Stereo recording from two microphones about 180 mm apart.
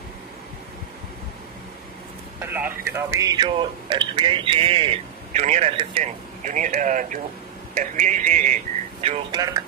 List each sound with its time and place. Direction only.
2.4 s speech: 10° right (ahead or behind); by 6.1 s 30° right (ahead or behind)
6.4 s speech: 45° right (ahead or behind)
9.0 s speech: 35° right (ahead or behind)